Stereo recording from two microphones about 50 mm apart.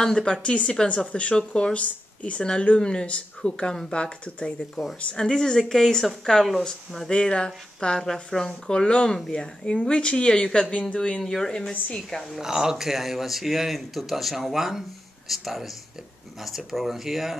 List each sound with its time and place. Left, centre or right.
0.0 s speech: centre
7.1 s speech: left
12.4 s speech: centre